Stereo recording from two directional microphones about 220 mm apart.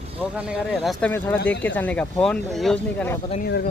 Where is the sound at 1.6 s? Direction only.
5° left (ahead or behind).